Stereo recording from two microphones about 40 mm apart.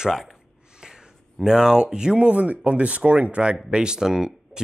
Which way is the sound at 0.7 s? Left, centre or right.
Centre.